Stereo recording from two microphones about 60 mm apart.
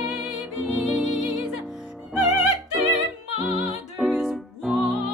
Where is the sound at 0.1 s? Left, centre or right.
Centre.